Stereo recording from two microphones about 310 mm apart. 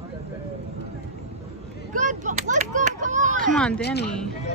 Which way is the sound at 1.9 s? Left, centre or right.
Right.